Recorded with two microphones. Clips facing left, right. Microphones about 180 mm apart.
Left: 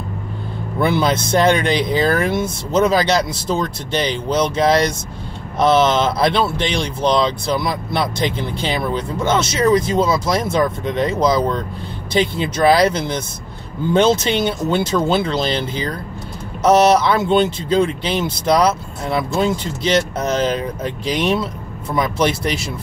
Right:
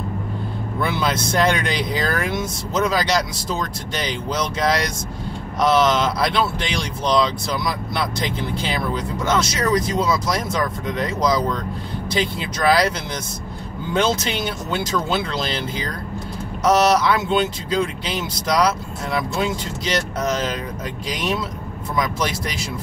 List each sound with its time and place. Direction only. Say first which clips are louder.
0.7 s speech: left 6 dB; 30° left (ahead or behind)
16.6 s speech: left 4 dB; 25° left (ahead or behind)